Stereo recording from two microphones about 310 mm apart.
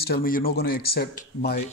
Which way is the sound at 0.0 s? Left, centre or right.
Left.